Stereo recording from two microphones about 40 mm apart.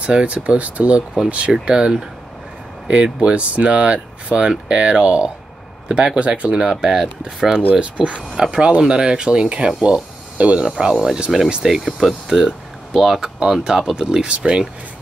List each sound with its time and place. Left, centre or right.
0.0 s speech: right
6.5 s speech: centre
9.8 s a sound: right
10.6 s speech: centre